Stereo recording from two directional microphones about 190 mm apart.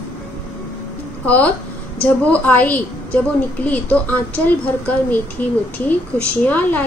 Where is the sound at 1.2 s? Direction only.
10° left (ahead or behind).